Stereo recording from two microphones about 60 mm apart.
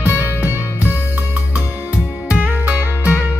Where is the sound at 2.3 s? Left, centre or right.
Right.